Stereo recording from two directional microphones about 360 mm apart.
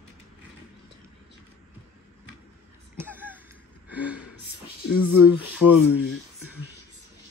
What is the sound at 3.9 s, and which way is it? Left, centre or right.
Gasp, centre.